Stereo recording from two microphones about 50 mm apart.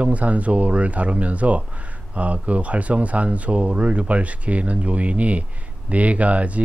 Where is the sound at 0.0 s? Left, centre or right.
Right.